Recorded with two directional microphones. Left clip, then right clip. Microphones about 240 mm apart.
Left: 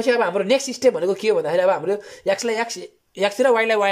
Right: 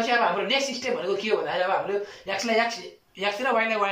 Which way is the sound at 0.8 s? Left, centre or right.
Left.